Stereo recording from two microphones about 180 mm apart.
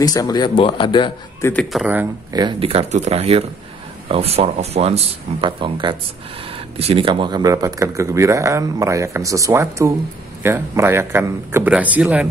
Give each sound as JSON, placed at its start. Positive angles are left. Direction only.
{"t": 0.0, "sound": "speech", "side_deg": 20}
{"t": 1.4, "sound": "a man's voice", "side_deg": 10}
{"t": 2.3, "sound": "speech", "side_deg": -25}